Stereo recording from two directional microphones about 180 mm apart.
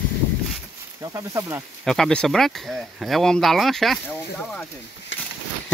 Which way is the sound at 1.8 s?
5° left (ahead or behind).